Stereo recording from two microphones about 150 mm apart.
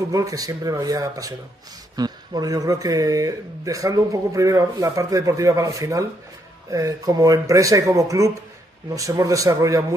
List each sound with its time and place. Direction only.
0.1 s speech: 25° right (ahead or behind)